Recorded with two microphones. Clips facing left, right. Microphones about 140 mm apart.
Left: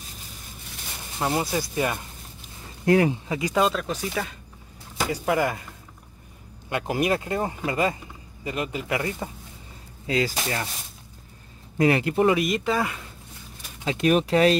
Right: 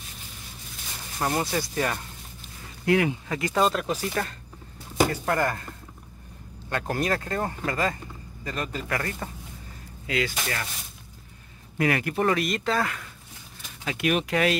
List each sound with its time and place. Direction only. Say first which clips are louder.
1.2 s speech: left 1 dB; 5° left (ahead or behind)
2.8 s speech: left 3 dB; 35° left (ahead or behind)
3.5 s speech: even; centre (ahead or behind)
6.7 s speech: left 3 dB; 15° left (ahead or behind)
10.0 s speech: left 3 dB; 35° left (ahead or behind)
11.8 s speech: left 4 dB; 25° left (ahead or behind)
13.8 s speech: left 5 dB; 35° left (ahead or behind)